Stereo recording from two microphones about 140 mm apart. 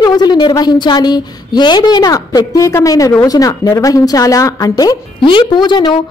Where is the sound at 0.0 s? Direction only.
30° left (ahead or behind).